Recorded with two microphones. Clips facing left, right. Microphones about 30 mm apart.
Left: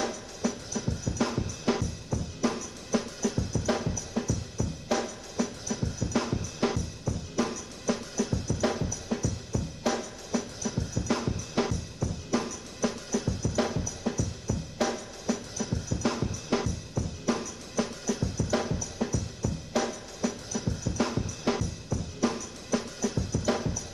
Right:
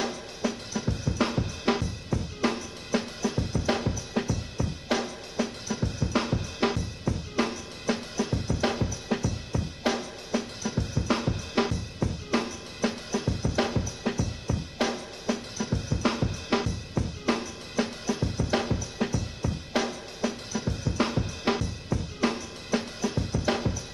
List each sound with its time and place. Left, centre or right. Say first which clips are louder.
0.4 s drum: right 1 dB; right
8.8 s drum kit: right 2 dB; right
21.8 s drum: right 2 dB; right